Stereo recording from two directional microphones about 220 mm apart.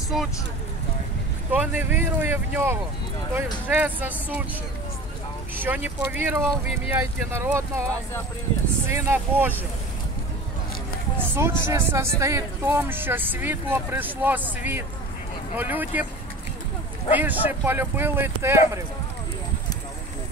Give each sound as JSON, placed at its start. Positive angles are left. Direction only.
{"t": 0.1, "sound": "speech", "side_deg": 0}
{"t": 1.5, "sound": "speech", "side_deg": -5}
{"t": 5.6, "sound": "speech", "side_deg": -10}
{"t": 8.8, "sound": "speech", "side_deg": -10}
{"t": 11.1, "sound": "speech", "side_deg": -10}
{"t": 17.1, "sound": "speech", "side_deg": -10}